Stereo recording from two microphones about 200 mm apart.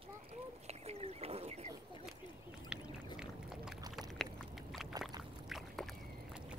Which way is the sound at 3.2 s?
Centre (ahead or behind).